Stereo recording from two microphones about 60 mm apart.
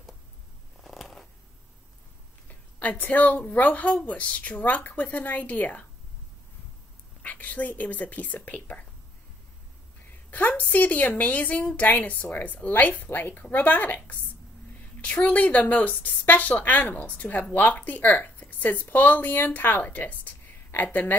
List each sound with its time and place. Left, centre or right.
0.8 s a sound: centre
2.4 s speech: left
7.2 s speech: left
10.5 s speech: left